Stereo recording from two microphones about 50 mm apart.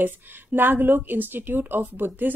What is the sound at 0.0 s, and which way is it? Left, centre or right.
A woman's voice, right.